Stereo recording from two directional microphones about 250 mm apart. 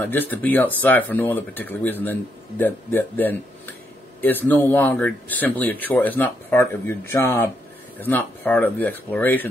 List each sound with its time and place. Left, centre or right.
0.0 s speech: centre